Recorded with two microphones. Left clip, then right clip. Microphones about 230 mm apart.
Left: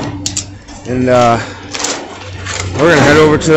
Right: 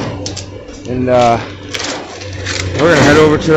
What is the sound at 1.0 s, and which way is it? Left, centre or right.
Speech, centre.